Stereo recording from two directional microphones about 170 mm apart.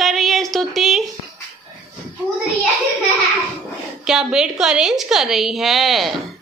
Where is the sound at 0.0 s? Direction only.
Centre (ahead or behind).